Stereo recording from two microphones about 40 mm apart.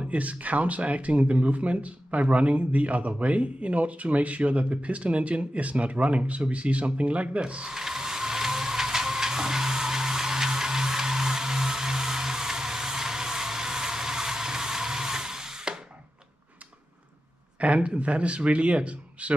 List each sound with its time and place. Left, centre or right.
0.0 s speech: right
7.7 s a sound: centre
17.6 s speech: right